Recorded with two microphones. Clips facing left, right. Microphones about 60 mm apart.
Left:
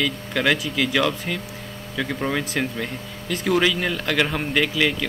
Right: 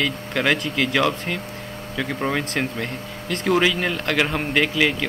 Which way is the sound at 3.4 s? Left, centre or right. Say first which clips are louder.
Right 1 dB; centre.